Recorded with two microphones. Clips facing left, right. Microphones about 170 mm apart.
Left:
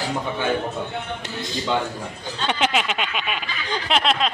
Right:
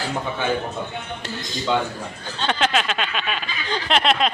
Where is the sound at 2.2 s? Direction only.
15° left (ahead or behind).